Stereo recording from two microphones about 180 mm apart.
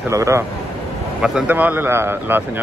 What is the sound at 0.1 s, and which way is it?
Speech, 15° right (ahead or behind).